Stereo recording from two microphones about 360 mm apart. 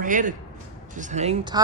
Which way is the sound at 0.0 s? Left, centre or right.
Right.